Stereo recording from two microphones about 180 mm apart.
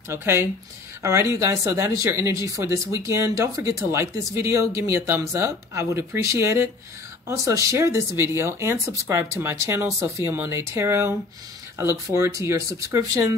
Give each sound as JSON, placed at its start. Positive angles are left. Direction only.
{"t": 0.1, "sound": "speech", "side_deg": -15}